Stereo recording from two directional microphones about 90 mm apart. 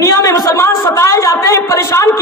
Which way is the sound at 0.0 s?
35° left (ahead or behind).